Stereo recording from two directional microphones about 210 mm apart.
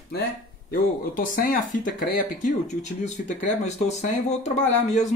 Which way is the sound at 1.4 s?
40° left (ahead or behind).